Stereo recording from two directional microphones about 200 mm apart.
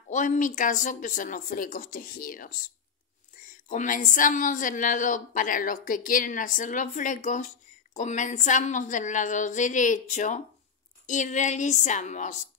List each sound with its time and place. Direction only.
0.1 s a woman's voice: 40° left (ahead or behind)
3.6 s a woman's voice: 40° left (ahead or behind)